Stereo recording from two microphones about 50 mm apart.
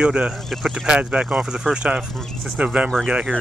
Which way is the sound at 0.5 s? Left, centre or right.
Centre.